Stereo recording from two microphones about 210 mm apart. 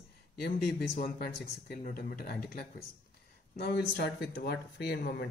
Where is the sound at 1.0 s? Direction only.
45° left (ahead or behind).